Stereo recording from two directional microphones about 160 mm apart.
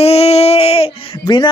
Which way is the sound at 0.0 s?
40° left (ahead or behind).